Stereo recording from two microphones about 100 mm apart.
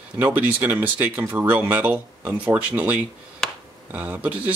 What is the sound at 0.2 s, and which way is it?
Speech, 15° right (ahead or behind).